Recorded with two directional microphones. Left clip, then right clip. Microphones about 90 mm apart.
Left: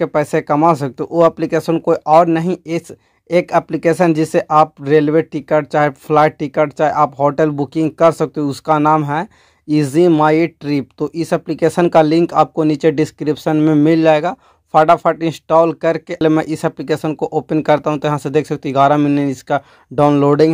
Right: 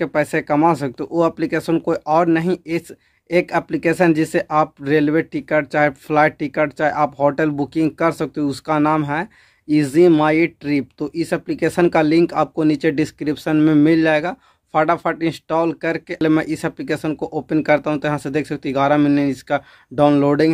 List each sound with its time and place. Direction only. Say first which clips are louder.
0.0 s speech: left 3 dB; 30° left (ahead or behind)
13.6 s speech: even; 20° left (ahead or behind)
13.8 s speech: left 4 dB; 35° left (ahead or behind)